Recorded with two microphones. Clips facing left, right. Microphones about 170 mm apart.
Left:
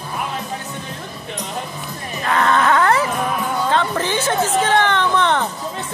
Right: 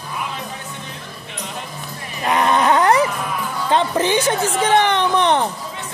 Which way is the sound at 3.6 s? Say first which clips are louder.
Right 5 dB; 20° right (ahead or behind).